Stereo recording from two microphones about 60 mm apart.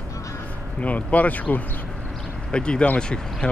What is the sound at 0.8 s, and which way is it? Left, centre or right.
Speech, left.